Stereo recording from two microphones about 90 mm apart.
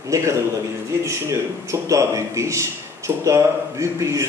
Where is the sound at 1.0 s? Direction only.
30° right (ahead or behind).